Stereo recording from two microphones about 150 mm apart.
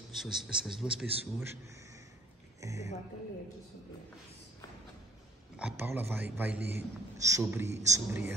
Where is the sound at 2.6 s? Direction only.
20° right (ahead or behind).